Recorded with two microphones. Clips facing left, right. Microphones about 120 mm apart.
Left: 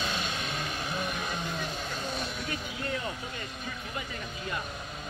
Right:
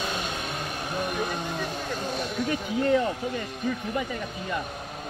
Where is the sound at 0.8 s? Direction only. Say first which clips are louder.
Right 8 dB; 50° right (ahead or behind).